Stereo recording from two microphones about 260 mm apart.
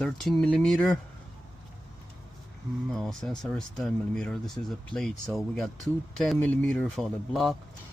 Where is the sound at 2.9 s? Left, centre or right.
Centre.